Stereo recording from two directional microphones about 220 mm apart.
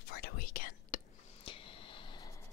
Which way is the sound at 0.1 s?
40° left (ahead or behind).